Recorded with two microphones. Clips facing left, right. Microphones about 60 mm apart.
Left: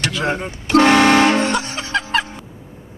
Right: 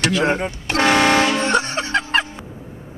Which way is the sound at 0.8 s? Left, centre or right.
Left.